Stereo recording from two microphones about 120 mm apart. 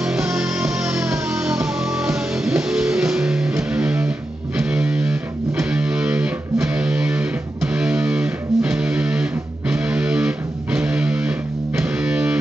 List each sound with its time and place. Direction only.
0.0 s music: 5° right (ahead or behind)